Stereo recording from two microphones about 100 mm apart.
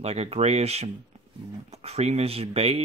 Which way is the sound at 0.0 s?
90° right.